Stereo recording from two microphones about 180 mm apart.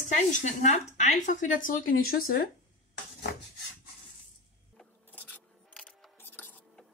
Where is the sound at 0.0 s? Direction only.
45° left (ahead or behind).